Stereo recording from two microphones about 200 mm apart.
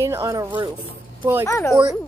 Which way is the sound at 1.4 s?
15° left (ahead or behind).